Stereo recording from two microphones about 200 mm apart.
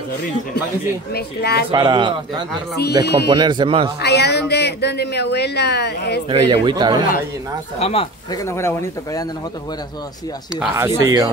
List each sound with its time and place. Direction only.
1.1 s speech: 55° left (ahead or behind)
1.7 s speech: 20° right (ahead or behind)
4.0 s speech: 55° left (ahead or behind)
6.2 s speech: 25° right (ahead or behind)
7.8 s speech: 30° left (ahead or behind)
8.5 s speech: 15° left (ahead or behind)
11.0 s speech: 15° right (ahead or behind)